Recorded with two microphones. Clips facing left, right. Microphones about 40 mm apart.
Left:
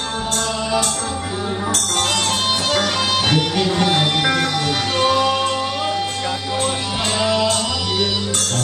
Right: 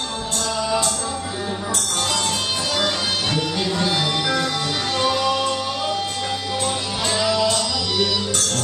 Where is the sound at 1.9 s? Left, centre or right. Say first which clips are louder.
Left 3 dB; left.